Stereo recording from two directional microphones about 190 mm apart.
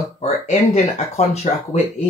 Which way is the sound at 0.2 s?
35° left (ahead or behind).